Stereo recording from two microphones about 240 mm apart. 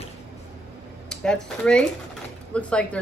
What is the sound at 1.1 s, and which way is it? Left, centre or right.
Speech, centre.